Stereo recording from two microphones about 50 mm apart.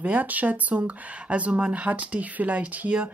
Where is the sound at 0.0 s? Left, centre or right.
Right.